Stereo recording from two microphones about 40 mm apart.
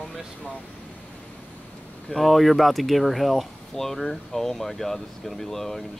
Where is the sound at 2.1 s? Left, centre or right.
Centre.